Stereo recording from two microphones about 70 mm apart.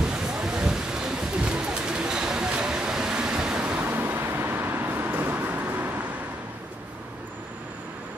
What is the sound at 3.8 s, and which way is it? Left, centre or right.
Vehicle, right.